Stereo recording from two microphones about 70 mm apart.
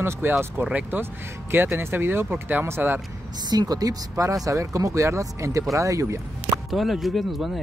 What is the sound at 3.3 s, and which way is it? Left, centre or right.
Speech, right.